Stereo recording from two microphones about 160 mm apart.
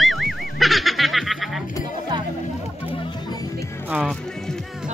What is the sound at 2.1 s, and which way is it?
Music, 30° right (ahead or behind).